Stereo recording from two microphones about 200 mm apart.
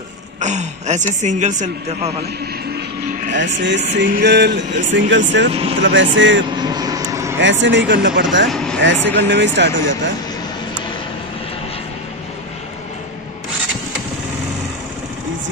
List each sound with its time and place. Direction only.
0.4 s a man's voice: 35° right (ahead or behind)
3.3 s speech: 65° right (ahead or behind)
6.5 s vehicle: 20° right (ahead or behind)
7.3 s speech: 65° right (ahead or behind)
8.5 s speech: centre (ahead or behind)
8.8 s speech: 65° right (ahead or behind)